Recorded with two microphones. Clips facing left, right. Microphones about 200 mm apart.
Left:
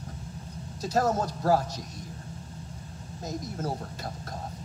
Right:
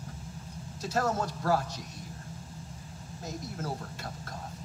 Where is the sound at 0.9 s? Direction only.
40° left (ahead or behind).